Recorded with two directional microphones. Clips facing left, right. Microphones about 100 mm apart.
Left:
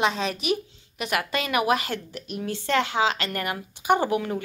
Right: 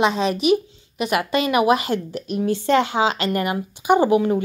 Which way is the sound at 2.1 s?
30° right (ahead or behind).